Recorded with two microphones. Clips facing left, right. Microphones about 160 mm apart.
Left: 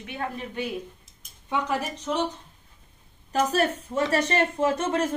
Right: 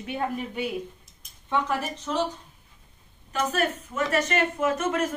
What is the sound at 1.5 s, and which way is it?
Speech, 15° left (ahead or behind).